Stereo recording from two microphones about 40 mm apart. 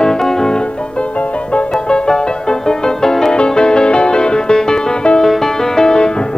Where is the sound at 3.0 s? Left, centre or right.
Centre.